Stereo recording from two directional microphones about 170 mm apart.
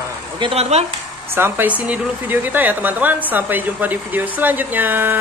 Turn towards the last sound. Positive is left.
turn(degrees=-10)  # may be behind; listen again after turning